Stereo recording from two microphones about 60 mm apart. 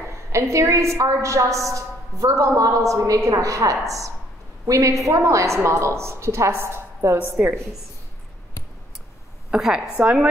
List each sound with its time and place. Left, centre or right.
0.1 s a woman's voice: right
9.5 s a woman's voice: centre